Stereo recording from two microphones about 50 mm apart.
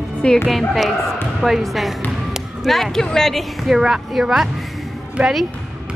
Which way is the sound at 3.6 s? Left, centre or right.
Centre.